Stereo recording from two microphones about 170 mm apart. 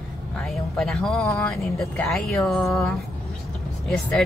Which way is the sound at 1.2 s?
15° left (ahead or behind).